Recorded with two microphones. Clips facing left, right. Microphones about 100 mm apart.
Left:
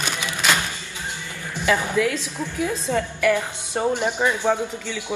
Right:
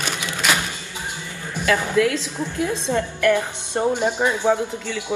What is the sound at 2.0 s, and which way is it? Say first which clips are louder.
Speech: right 2 dB; 20° right (ahead or behind).